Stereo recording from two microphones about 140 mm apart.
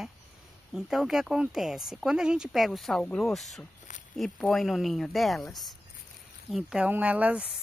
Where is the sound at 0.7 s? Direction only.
Centre (ahead or behind).